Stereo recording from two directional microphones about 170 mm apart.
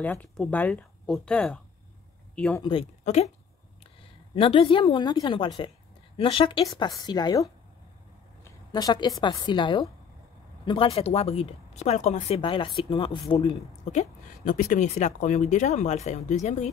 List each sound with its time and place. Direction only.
0.0 s speech: 10° left (ahead or behind)
2.6 s speech: 30° left (ahead or behind)
4.4 s speech: 35° left (ahead or behind)
8.7 s speech: 25° left (ahead or behind)
13.8 s speech: 45° left (ahead or behind)